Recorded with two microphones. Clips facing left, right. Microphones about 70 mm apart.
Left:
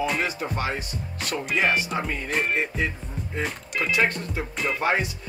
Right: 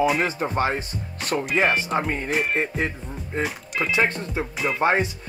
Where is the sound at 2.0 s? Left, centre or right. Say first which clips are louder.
Right 4 dB; right.